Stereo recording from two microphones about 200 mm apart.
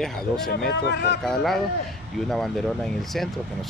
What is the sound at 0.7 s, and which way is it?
Speech, 55° left (ahead or behind).